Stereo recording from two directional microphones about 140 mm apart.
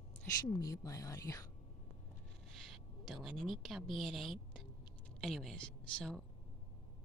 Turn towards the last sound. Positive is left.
turn(degrees=5)  # may be behind; listen again after turning